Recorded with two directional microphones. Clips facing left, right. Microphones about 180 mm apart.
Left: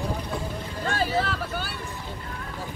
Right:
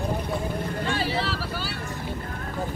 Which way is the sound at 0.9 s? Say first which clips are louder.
Left 4 dB; 50° left (ahead or behind).